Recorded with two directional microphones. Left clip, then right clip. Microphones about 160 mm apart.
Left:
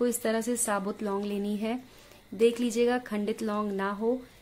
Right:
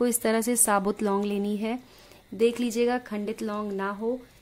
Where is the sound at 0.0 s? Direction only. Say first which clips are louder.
Right 3 dB; 25° right (ahead or behind).